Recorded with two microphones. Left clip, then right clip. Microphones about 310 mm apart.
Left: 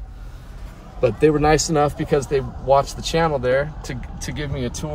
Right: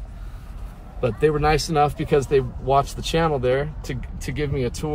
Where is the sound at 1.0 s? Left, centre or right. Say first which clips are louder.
Left 4 dB; centre.